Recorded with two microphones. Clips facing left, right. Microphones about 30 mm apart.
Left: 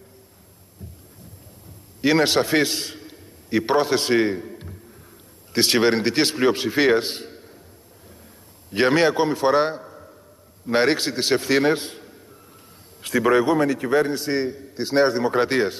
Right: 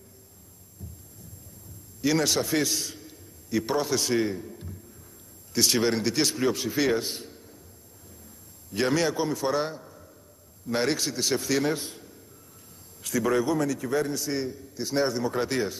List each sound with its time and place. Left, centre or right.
2.0 s a man's voice: left
8.6 s a man's voice: left
13.0 s a man's voice: left